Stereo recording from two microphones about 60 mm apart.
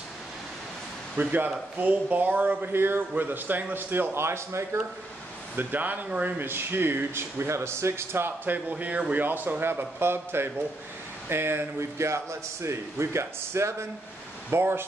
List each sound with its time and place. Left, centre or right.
1.1 s speech: right
2.7 s speech: right
5.6 s speech: right
6.3 s a man's voice: right
14.5 s speech: right